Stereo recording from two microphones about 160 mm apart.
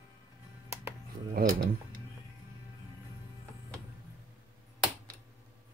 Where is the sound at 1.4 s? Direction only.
70° right (ahead or behind).